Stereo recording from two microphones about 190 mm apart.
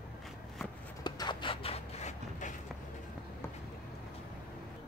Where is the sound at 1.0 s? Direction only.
25° left (ahead or behind); by 2.5 s 40° left (ahead or behind).